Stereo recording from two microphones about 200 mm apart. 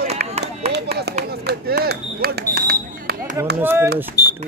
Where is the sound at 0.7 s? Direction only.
55° right (ahead or behind).